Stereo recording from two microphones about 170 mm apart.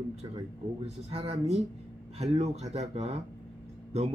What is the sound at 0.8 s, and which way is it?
A man's voice, 35° right (ahead or behind).